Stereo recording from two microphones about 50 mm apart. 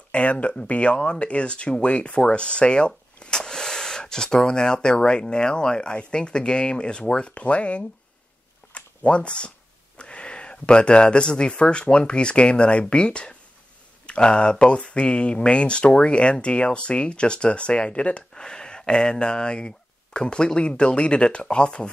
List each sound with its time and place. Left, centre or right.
0.1 s speech: left
8.7 s a sound: left
9.9 s speech: left